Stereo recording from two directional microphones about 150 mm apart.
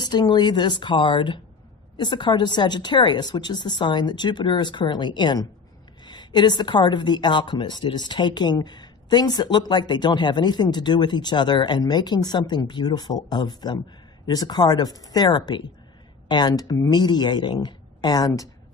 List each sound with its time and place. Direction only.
0.0 s a woman's voice: 30° left (ahead or behind)